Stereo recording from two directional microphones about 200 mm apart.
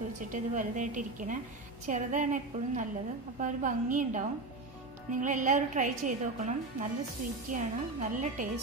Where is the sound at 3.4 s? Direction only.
40° right (ahead or behind).